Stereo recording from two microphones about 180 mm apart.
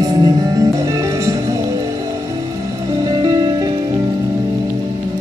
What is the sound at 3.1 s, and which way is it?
Music, 20° right (ahead or behind).